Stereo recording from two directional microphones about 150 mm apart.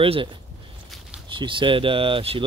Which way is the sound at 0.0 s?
35° right (ahead or behind).